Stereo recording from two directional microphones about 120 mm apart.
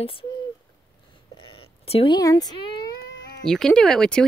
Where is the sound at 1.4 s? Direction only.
50° left (ahead or behind).